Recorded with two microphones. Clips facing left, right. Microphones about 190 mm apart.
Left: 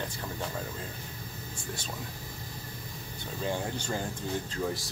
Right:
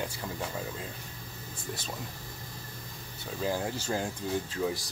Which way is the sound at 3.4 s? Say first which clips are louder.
Right 1 dB; 5° right (ahead or behind).